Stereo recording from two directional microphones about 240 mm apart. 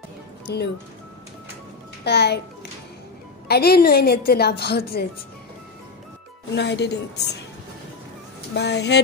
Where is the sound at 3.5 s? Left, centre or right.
Left.